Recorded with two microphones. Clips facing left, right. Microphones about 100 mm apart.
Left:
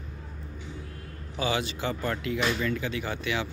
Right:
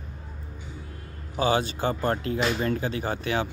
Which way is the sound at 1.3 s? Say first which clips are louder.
Right 5 dB; 40° right (ahead or behind).